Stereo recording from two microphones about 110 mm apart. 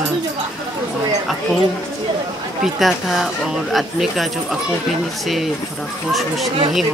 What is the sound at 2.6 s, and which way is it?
Speech, centre (ahead or behind).